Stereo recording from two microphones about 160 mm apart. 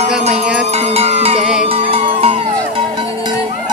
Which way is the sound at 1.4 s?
5° right (ahead or behind).